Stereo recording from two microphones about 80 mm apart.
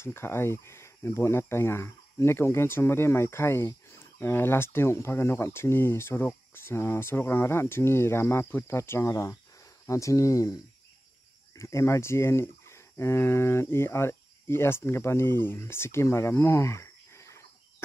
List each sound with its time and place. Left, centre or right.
0.0 s speech: left